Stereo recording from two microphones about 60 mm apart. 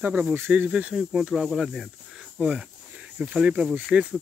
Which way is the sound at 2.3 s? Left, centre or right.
Centre.